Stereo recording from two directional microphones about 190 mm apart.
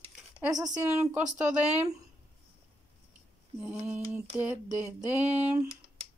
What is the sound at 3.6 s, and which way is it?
Speech, 5° right (ahead or behind).